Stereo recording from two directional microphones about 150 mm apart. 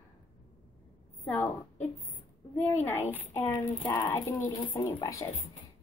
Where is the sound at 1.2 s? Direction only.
10° left (ahead or behind).